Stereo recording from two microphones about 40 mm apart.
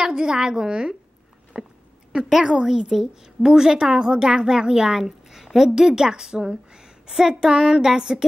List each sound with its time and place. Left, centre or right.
0.0 s a woman's voice: centre
5.7 s a woman's voice: centre